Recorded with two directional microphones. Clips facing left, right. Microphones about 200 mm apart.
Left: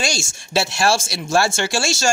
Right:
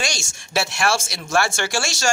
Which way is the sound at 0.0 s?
30° left (ahead or behind).